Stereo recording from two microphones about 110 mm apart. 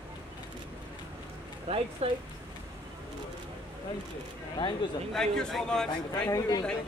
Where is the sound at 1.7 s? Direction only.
85° right.